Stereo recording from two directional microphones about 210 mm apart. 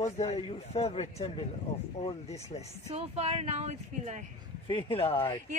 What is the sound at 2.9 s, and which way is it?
A man's voice, 30° right (ahead or behind).